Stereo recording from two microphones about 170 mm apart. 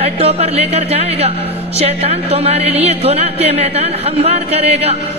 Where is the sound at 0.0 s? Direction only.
35° right (ahead or behind).